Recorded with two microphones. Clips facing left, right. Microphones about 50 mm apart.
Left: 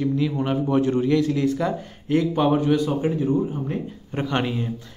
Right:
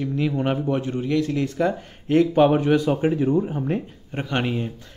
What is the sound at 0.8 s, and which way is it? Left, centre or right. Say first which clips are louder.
Speech: left 3 dB; centre.